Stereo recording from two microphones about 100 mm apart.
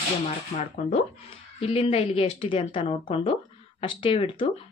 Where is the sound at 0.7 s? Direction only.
90° left.